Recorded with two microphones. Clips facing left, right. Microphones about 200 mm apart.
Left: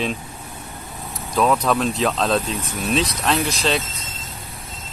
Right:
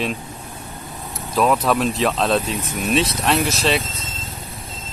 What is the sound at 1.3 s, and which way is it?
Speech, centre (ahead or behind).